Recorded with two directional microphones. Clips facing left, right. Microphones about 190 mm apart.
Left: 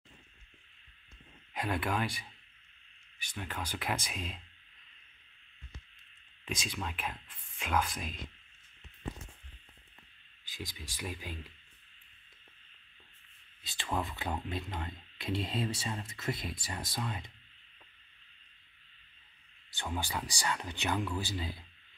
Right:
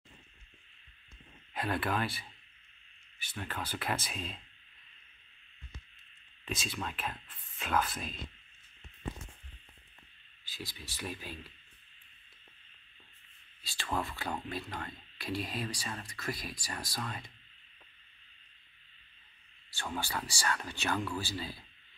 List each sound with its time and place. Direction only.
1.5 s speech: 15° left (ahead or behind)
6.4 s speech: 15° left (ahead or behind)
10.4 s speech: 15° left (ahead or behind)
13.6 s a sound: 20° left (ahead or behind)
13.9 s speech: 20° left (ahead or behind)
19.7 s speech: 20° left (ahead or behind)